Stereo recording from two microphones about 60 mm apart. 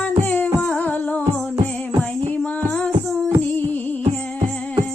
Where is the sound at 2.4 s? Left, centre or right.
Left.